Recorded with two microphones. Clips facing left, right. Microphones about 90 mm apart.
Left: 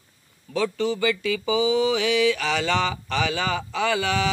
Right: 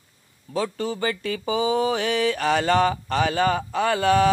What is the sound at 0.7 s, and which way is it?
Speech, 45° right (ahead or behind).